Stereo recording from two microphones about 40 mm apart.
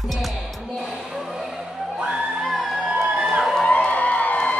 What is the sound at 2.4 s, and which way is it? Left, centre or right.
Music, centre.